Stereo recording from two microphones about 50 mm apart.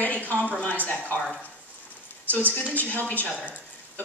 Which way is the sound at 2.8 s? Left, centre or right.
Left.